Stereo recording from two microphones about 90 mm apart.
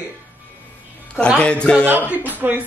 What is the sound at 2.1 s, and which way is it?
Speech, 20° right (ahead or behind).